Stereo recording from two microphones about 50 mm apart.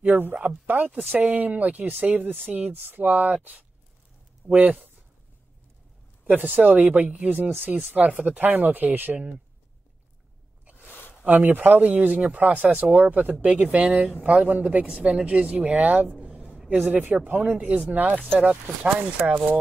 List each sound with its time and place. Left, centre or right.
0.2 s speech: right
4.5 s speech: right
6.2 s speech: right
10.9 s a sound: left
11.2 s speech: right
16.2 s a sound: right
16.6 s speech: right
17.9 s speech: right